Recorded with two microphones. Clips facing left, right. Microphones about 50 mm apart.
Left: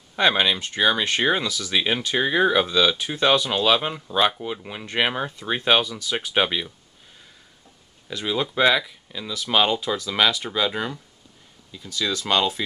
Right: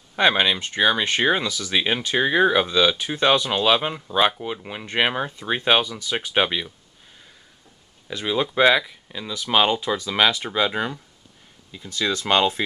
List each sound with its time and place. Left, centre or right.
0.1 s speech: centre
8.1 s speech: centre
11.7 s speech: right